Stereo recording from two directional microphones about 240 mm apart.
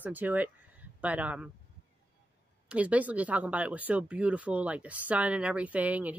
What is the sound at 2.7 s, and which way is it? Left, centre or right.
Speech, centre.